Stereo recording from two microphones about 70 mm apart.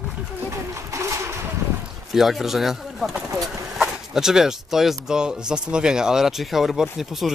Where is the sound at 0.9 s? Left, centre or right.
Right.